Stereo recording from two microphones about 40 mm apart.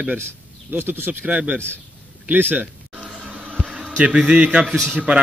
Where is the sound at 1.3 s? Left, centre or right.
Right.